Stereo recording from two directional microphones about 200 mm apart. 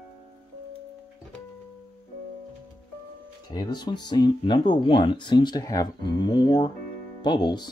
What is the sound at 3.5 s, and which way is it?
Speech, 20° left (ahead or behind).